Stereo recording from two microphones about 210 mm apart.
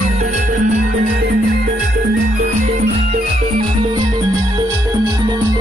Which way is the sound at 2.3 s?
35° right (ahead or behind).